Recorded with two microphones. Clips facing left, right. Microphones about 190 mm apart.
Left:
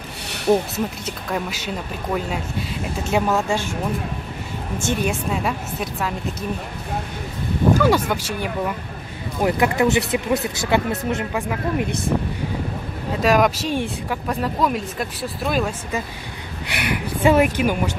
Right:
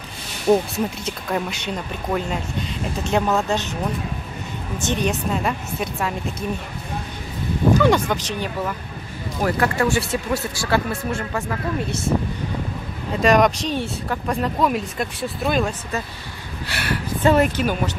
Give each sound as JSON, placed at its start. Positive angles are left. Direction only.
{"t": 0.5, "sound": "speech", "side_deg": 0}
{"t": 4.8, "sound": "speech", "side_deg": 5}
{"t": 7.8, "sound": "speech", "side_deg": 5}
{"t": 13.2, "sound": "speech", "side_deg": 5}
{"t": 16.6, "sound": "speech", "side_deg": 15}